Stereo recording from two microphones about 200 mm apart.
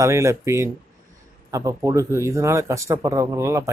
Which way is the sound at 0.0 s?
15° right (ahead or behind).